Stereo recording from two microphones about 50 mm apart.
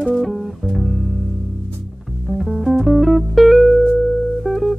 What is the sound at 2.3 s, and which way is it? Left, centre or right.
Music, centre.